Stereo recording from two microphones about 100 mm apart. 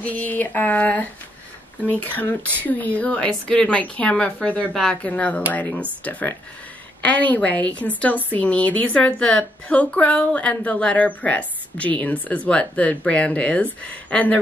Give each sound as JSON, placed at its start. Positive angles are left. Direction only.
{"t": 0.0, "sound": "a woman's voice", "side_deg": 15}